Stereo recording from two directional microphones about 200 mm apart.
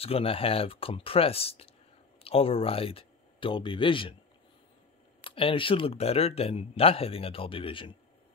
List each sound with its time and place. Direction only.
0.0 s speech: 30° left (ahead or behind)
5.2 s speech: 25° left (ahead or behind)